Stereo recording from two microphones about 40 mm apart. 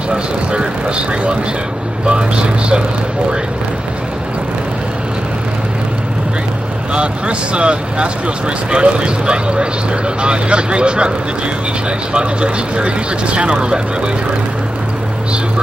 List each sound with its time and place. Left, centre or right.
0.1 s speech: right
6.9 s speech: right